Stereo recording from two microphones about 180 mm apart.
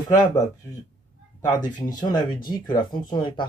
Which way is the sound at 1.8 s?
20° left (ahead or behind).